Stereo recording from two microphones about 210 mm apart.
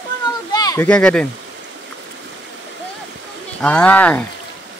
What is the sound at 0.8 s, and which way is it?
Speech, 5° left (ahead or behind).